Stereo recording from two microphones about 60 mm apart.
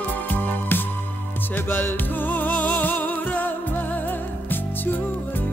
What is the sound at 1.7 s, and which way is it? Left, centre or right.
Music, left.